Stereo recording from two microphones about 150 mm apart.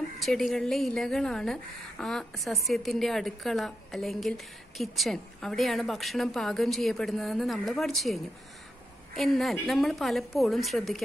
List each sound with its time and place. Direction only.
0.2 s a woman's voice: centre (ahead or behind)